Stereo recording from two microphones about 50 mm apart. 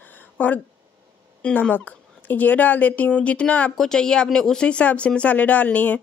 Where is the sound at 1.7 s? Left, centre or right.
Left.